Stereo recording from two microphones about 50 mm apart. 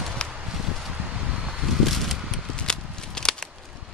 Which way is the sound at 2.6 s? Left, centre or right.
Centre.